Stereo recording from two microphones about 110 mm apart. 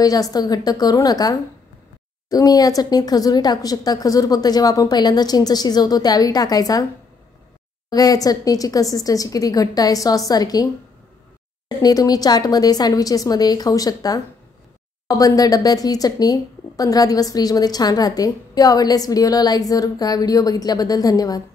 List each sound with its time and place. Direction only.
0.0 s speech: 35° left (ahead or behind)
7.9 s speech: 35° left (ahead or behind)
11.8 s speech: 35° left (ahead or behind)